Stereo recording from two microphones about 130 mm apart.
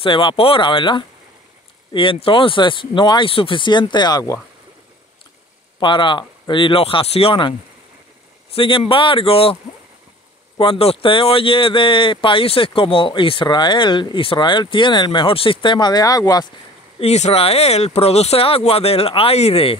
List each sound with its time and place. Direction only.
0.0 s speech: 40° left (ahead or behind)
5.8 s speech: 40° left (ahead or behind)
8.5 s speech: 40° left (ahead or behind)
10.6 s speech: 45° left (ahead or behind); by 16.4 s 30° left (ahead or behind)
17.0 s speech: 55° left (ahead or behind)